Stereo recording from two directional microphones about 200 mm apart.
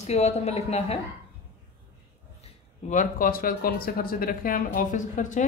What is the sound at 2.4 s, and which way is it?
Speech, 40° left (ahead or behind).